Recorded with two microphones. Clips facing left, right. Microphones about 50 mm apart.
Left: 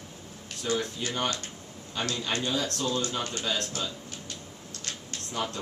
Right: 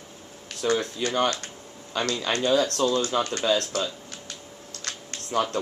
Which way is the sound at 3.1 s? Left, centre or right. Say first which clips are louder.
Right 8 dB; right.